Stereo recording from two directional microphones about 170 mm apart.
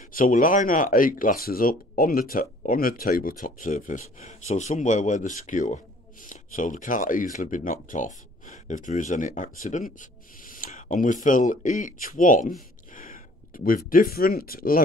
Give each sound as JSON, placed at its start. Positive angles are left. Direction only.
{"t": 0.1, "sound": "speech", "side_deg": 55}
{"t": 12.9, "sound": "a sound", "side_deg": 55}
{"t": 13.8, "sound": "speech", "side_deg": 60}